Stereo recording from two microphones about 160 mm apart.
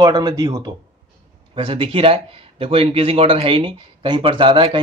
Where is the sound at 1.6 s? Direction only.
35° right (ahead or behind).